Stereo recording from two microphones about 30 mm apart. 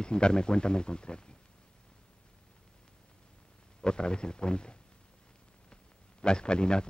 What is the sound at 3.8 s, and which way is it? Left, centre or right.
Speech, left.